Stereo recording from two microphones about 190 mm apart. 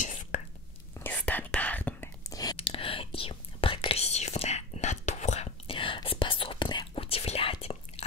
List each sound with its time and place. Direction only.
0.0 s whispering: 45° left (ahead or behind)
0.9 s whispering: 10° left (ahead or behind)
2.5 s whispering: 30° left (ahead or behind)